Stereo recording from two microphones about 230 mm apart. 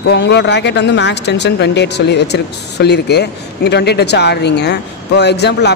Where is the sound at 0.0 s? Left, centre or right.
Left.